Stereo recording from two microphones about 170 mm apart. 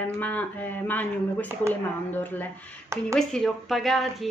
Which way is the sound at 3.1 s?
Centre (ahead or behind).